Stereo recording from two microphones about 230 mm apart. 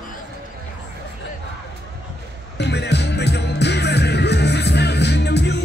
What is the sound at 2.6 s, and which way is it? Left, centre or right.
Music, left.